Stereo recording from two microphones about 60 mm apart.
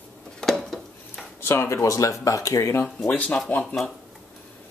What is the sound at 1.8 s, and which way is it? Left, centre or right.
Speech, left.